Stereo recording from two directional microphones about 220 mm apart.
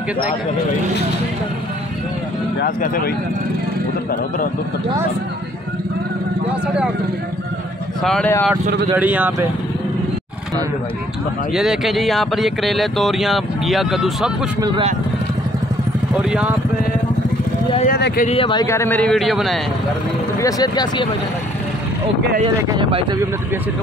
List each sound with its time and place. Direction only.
2.6 s speech: 45° left (ahead or behind)
8.0 s speech: 5° left (ahead or behind)
8.9 s speech: 5° right (ahead or behind)
11.5 s speech: centre (ahead or behind)
14.6 s speech: 25° right (ahead or behind)
16.2 s speech: 5° right (ahead or behind)
17.8 s speech: 45° left (ahead or behind)
18.3 s speech: 20° left (ahead or behind); by 19.6 s centre (ahead or behind)
20.3 s speech: 15° left (ahead or behind)
22.4 s speech: 25° right (ahead or behind)